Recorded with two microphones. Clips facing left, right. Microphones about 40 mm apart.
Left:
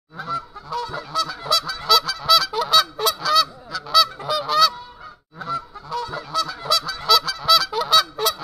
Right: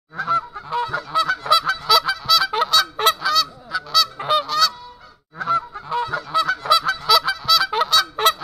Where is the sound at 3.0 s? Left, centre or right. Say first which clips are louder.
Right 4 dB; right.